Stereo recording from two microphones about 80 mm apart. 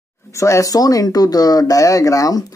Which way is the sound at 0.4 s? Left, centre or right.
Left.